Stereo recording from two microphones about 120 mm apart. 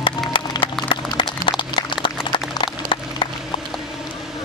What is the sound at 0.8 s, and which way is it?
Applause, 45° left (ahead or behind).